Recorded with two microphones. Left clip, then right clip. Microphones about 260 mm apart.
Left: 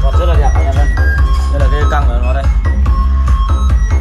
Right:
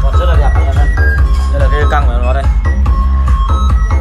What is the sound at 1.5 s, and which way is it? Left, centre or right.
Music, left.